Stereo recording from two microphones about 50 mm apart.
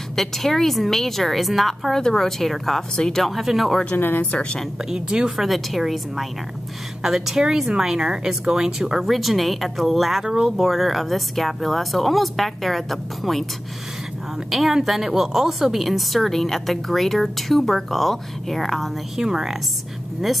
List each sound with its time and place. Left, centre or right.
0.1 s a woman's voice: centre
3.9 s speech: left
4.8 s speech: centre
5.3 s a woman's voice: centre
10.2 s speech: centre
10.5 s a woman's voice: centre
14.5 s a woman's voice: centre
19.1 s speech: centre